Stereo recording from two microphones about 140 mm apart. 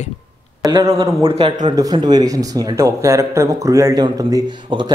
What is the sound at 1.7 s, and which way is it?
Speech, 25° right (ahead or behind).